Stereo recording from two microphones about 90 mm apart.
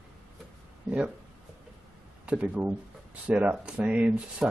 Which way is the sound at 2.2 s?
15° right (ahead or behind).